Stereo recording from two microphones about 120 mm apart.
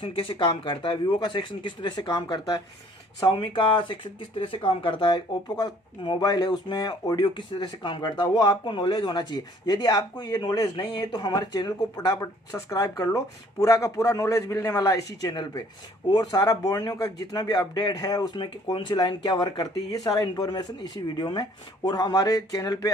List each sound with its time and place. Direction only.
0.0 s speech: 45° left (ahead or behind)
5.6 s speech: 35° left (ahead or behind)